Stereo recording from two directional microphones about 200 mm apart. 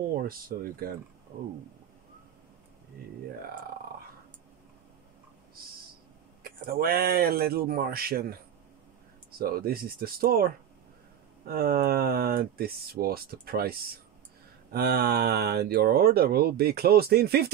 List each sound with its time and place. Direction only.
0.1 s speech: 45° right (ahead or behind)
6.4 s speech: 50° right (ahead or behind)
9.4 s speech: 50° right (ahead or behind)